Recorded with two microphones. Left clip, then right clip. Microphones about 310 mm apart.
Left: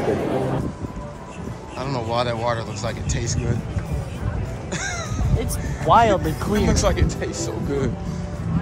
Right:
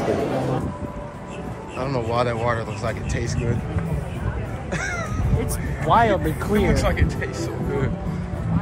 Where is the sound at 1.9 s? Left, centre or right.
Centre.